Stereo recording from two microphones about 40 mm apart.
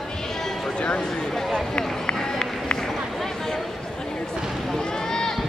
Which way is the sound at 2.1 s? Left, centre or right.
Centre.